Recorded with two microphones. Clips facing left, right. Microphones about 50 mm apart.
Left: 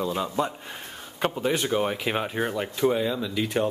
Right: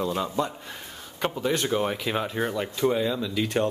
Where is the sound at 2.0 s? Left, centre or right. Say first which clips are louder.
Even; centre.